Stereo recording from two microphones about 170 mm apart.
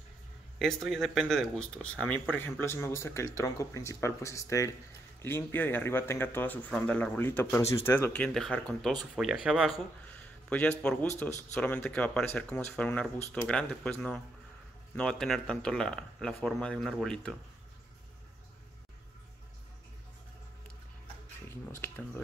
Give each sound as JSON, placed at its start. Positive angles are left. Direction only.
{"t": 0.6, "sound": "speech", "side_deg": 0}
{"t": 10.5, "sound": "speech", "side_deg": 5}
{"t": 21.8, "sound": "speech", "side_deg": 15}